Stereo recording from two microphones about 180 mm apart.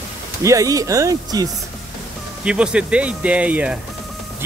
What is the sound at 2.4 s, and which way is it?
Speech, 5° right (ahead or behind).